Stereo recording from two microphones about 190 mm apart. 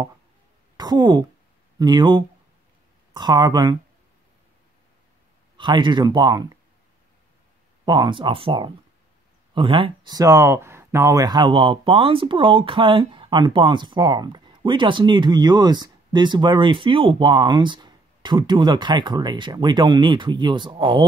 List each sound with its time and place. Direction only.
0.7 s speech: 20° right (ahead or behind)
5.6 s speech: 25° right (ahead or behind)
7.8 s speech: 20° right (ahead or behind)